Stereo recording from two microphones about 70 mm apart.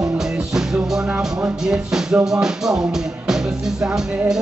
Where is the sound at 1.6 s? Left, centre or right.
Centre.